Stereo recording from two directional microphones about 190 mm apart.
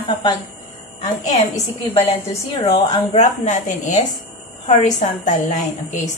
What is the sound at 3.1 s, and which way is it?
A woman's voice, 40° left (ahead or behind).